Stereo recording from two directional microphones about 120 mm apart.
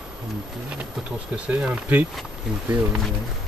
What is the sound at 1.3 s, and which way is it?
Speech, 10° right (ahead or behind).